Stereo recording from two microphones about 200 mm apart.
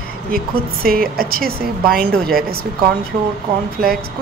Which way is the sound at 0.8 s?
45° right (ahead or behind).